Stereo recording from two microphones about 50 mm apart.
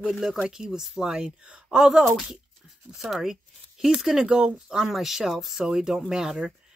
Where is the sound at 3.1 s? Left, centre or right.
Centre.